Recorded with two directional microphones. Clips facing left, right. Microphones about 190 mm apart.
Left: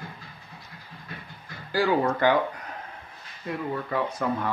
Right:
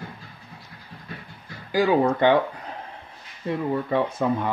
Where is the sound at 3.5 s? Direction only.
25° right (ahead or behind).